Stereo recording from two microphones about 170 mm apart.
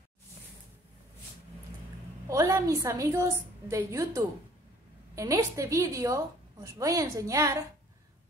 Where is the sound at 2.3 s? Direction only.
15° right (ahead or behind).